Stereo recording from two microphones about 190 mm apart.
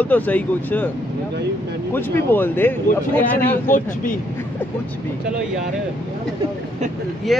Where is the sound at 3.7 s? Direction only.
45° left (ahead or behind).